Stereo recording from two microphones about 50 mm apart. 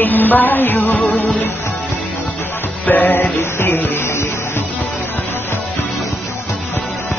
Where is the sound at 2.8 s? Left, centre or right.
Left.